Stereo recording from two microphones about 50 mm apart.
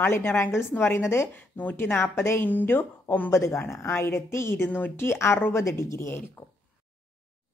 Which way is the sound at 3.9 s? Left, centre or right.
Left.